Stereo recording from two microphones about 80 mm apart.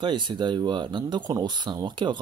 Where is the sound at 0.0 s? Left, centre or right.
Right.